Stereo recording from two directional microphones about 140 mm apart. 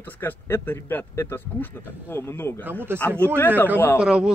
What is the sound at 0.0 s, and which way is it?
Speech, 15° left (ahead or behind).